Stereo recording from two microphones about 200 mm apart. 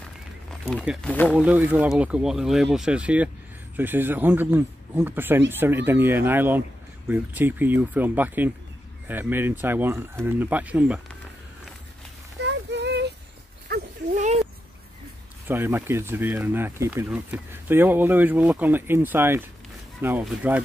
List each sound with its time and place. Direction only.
0.5 s speech: centre (ahead or behind)
1.3 s speech: 5° right (ahead or behind)
12.4 s child singing: 60° right (ahead or behind)
13.7 s a sound: 50° right (ahead or behind)
14.1 s a sound: 35° right (ahead or behind)
15.4 s speech: 10° right (ahead or behind)